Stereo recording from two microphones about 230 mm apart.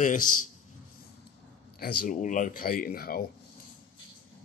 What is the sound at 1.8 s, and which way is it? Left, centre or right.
Speech, left.